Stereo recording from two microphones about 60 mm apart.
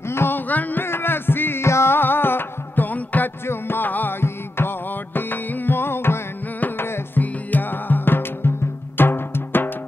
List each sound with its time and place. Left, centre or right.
0.1 s music: left
0.5 s music: left
0.8 s music: left
6.6 s music: left